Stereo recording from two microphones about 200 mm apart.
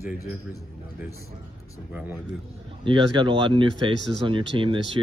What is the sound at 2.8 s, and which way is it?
Speech, 25° right (ahead or behind).